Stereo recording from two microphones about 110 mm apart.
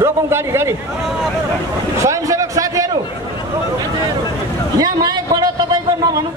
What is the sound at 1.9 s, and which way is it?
Speech, 30° right (ahead or behind).